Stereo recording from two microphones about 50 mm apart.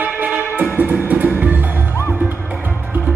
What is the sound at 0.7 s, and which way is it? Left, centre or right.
Music, right.